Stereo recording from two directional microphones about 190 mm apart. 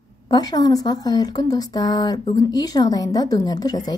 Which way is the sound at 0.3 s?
20° left (ahead or behind).